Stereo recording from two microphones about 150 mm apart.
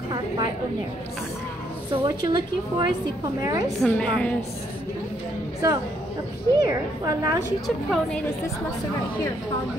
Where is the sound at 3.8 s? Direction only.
5° left (ahead or behind).